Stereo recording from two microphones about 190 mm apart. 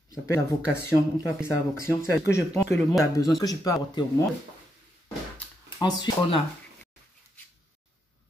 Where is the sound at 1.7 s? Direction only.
15° left (ahead or behind).